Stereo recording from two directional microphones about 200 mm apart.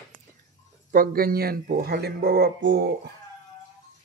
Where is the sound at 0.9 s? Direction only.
45° right (ahead or behind).